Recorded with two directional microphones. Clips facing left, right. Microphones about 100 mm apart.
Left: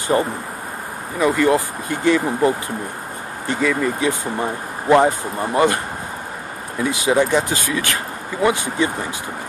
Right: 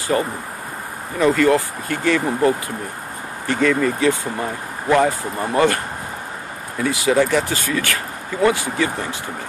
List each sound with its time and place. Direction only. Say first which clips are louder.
0.1 s speech: left 2 dB; 25° left (ahead or behind)
6.8 s speech: even; 20° left (ahead or behind)